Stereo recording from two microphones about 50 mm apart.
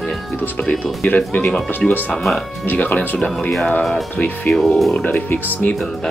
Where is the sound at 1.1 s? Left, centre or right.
Left.